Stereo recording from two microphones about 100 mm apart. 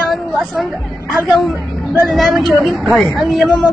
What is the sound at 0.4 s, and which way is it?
A woman's voice, centre (ahead or behind).